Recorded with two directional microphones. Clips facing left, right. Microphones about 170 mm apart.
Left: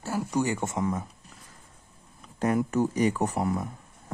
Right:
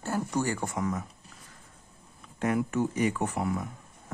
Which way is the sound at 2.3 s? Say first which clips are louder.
Left 3 dB; 40° left (ahead or behind).